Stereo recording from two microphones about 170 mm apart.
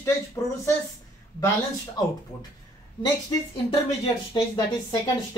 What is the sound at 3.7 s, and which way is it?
Speech, 30° left (ahead or behind).